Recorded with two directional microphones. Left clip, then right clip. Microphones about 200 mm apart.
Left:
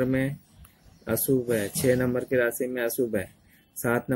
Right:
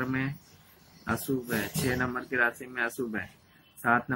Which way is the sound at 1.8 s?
40° left (ahead or behind).